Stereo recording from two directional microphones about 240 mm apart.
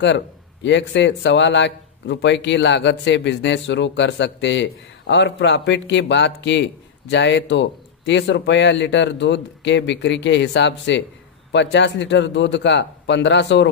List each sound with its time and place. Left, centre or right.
0.0 s speech: left